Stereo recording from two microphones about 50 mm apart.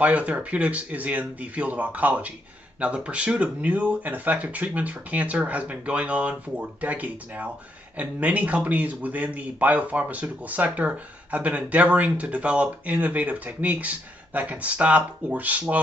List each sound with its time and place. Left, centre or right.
0.0 s speech: right